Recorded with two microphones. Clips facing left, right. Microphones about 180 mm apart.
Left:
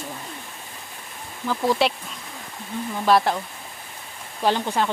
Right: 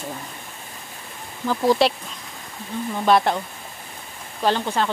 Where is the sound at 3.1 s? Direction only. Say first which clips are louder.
Right 1 dB; centre (ahead or behind).